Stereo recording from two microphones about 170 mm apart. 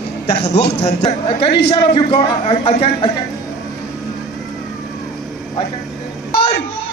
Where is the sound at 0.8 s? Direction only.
35° left (ahead or behind).